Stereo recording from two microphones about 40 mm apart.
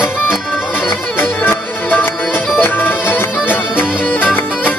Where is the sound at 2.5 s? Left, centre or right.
Left.